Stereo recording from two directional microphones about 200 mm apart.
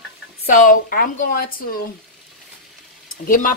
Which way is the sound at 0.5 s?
40° left (ahead or behind).